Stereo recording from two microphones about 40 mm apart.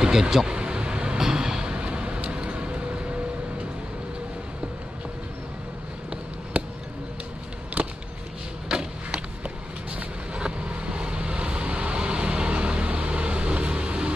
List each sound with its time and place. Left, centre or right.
0.0 s speech: centre
0.5 s vehicle: right
7.8 s a sound: right